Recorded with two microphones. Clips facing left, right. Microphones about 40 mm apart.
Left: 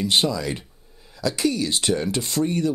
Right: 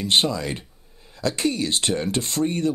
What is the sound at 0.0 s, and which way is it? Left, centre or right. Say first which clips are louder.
Speech: even; right.